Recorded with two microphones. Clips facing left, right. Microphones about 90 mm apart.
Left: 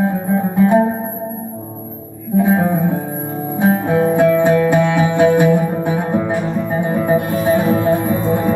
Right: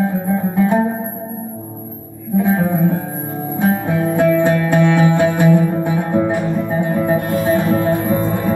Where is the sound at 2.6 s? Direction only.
20° left (ahead or behind).